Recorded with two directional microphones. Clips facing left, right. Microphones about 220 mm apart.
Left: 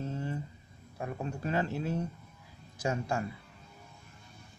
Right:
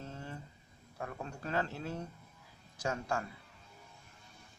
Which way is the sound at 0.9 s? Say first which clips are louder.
Left 5 dB; 15° left (ahead or behind).